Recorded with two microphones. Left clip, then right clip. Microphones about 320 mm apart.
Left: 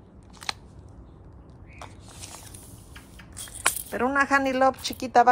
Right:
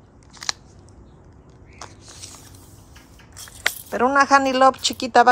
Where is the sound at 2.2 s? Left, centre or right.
Centre.